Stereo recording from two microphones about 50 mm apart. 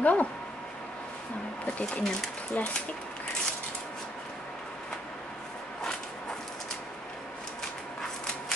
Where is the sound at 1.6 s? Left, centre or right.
Left.